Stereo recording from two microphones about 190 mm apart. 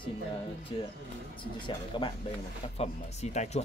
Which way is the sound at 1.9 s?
25° left (ahead or behind).